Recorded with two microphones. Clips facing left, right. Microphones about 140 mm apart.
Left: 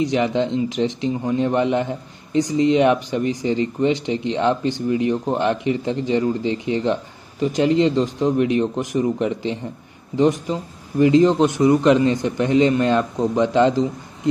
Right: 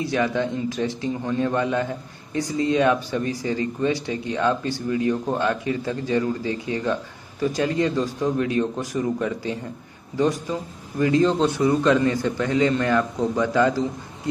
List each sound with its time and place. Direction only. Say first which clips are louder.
0.0 s a man's voice: left 4 dB; 20° left (ahead or behind)